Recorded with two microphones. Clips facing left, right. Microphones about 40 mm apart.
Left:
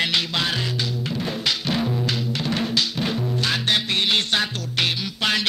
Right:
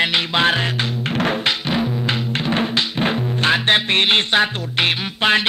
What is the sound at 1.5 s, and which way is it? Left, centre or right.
Music, right.